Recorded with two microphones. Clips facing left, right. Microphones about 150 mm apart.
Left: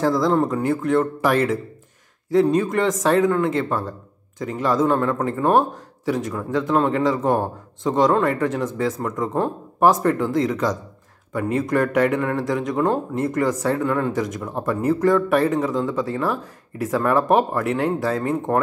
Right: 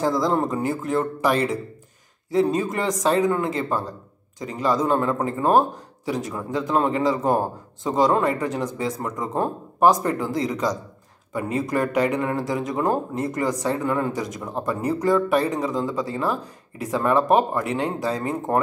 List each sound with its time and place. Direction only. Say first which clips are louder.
0.0 s speech: left 2 dB; centre (ahead or behind)
0.3 s speech: left 3 dB; 20° right (ahead or behind)
0.6 s speech: left 4 dB; centre (ahead or behind)